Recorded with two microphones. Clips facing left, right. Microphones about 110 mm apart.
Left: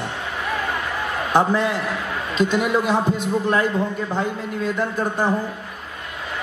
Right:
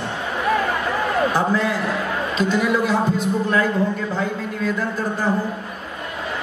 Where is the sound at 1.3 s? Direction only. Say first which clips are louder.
Left 1 dB; 20° left (ahead or behind).